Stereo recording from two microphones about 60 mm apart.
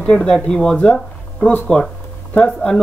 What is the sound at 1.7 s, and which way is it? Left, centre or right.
Speech, centre.